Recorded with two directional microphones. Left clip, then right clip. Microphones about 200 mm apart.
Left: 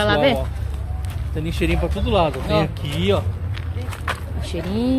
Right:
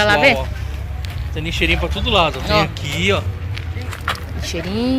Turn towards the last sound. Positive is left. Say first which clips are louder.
# right 2 dB
turn(degrees=0)  # may be behind; listen again after turning